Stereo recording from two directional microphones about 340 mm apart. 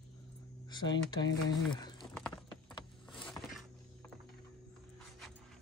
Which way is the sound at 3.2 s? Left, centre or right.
Centre.